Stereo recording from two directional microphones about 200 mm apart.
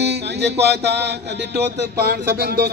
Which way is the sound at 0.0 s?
55° right (ahead or behind).